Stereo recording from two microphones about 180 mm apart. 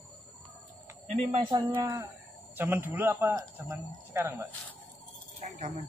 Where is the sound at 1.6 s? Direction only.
15° right (ahead or behind).